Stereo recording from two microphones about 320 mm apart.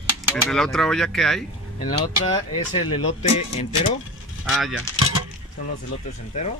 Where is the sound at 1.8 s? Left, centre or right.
Centre.